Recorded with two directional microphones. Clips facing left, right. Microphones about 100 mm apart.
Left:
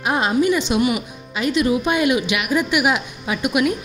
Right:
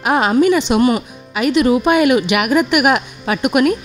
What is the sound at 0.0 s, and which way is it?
A woman's voice, 65° right (ahead or behind).